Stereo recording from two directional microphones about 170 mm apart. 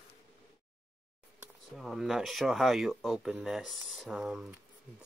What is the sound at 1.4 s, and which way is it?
Speech, centre (ahead or behind).